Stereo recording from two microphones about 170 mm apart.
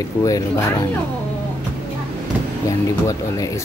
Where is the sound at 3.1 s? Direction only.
20° left (ahead or behind).